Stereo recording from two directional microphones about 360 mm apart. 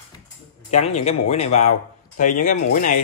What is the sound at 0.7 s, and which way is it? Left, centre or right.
Speech, centre.